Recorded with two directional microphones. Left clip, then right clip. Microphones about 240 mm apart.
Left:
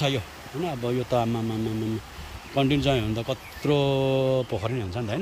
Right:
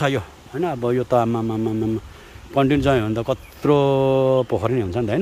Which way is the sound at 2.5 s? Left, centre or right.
Centre.